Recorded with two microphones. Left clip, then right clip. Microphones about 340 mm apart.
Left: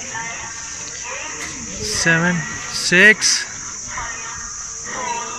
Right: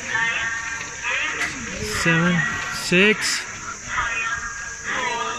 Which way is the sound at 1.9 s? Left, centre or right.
Centre.